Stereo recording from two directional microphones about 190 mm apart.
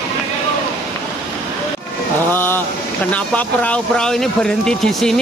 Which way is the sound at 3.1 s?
5° left (ahead or behind).